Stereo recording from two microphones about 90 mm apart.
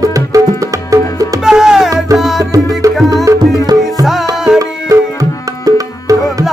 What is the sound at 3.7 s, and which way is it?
Music, 50° right (ahead or behind).